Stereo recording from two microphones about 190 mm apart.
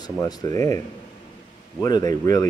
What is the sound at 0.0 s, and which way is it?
Speech, 20° left (ahead or behind).